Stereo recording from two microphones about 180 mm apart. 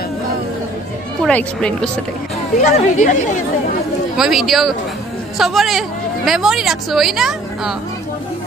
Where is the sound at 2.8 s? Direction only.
40° left (ahead or behind).